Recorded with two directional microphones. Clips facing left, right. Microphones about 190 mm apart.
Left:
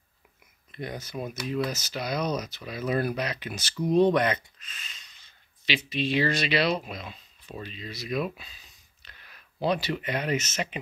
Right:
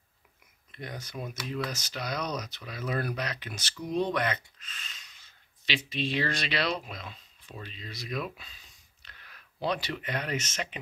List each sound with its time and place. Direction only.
0.7 s speech: 10° left (ahead or behind)
3.9 s speech: 25° left (ahead or behind)
5.7 s speech: 5° left (ahead or behind)